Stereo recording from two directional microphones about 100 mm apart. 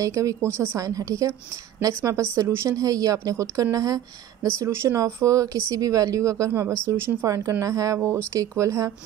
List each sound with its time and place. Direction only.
0.0 s speech: 30° right (ahead or behind)
7.2 s speech: 35° right (ahead or behind)